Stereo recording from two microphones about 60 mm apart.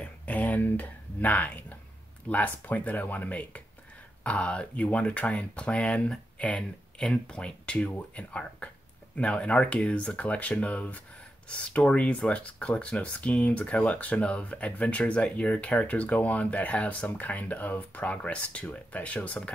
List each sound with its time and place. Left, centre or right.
0.0 s speech: left